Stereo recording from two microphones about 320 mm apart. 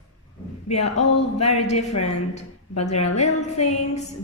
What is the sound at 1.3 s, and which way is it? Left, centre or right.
A woman's voice, left.